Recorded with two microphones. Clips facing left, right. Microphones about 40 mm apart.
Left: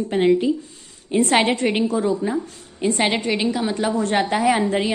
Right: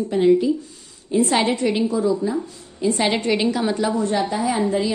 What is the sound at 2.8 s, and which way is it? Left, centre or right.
Speech, left.